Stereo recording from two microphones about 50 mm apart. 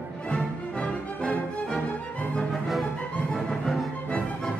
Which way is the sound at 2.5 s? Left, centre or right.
Centre.